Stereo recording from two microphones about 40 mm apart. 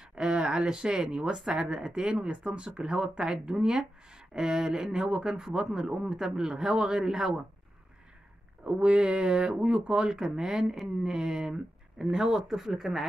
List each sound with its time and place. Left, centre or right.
0.1 s speech: centre
8.6 s speech: right; by 13.0 s centre